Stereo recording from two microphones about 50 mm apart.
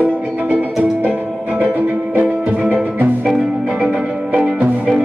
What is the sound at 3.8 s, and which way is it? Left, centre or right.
Music, centre.